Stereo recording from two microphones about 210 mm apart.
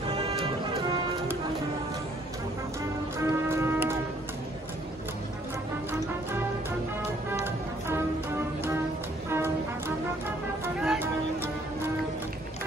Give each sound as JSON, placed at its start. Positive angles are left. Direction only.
{"t": 0.2, "sound": "music", "side_deg": -25}
{"t": 3.2, "sound": "music", "side_deg": -10}
{"t": 9.3, "sound": "music", "side_deg": -10}